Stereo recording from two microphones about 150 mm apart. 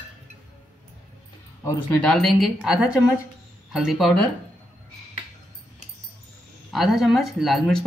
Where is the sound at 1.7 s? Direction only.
10° left (ahead or behind).